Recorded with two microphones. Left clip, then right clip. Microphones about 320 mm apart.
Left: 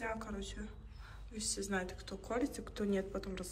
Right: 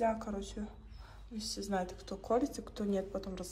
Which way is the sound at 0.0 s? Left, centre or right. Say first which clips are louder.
Right 7 dB; centre.